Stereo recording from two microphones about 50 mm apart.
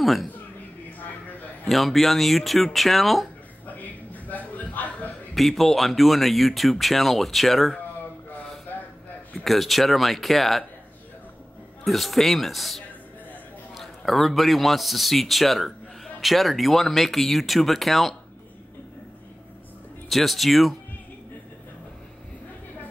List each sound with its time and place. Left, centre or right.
0.0 s speech: centre
1.7 s a man's voice: centre
3.6 s a sound: left
5.3 s a man's voice: centre
9.3 s a man's voice: centre
11.8 s a man's voice: centre
20.1 s a man's voice: centre